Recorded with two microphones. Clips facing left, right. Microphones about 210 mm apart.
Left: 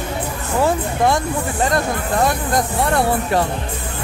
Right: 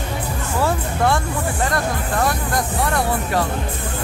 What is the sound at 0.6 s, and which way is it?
Speech, 15° left (ahead or behind).